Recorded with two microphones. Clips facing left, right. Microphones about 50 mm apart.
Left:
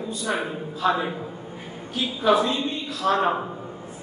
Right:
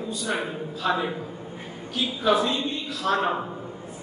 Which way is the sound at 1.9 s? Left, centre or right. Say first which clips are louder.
Left 2 dB; left.